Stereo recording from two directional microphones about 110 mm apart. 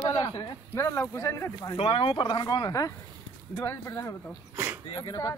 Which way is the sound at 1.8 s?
60° left (ahead or behind).